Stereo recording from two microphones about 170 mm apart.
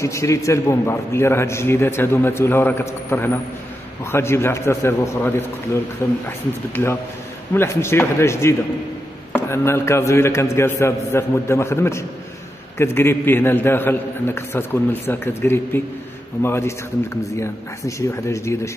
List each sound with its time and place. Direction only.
0.0 s a man's voice: 15° left (ahead or behind)